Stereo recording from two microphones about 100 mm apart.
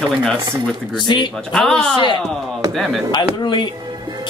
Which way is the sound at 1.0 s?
50° left (ahead or behind).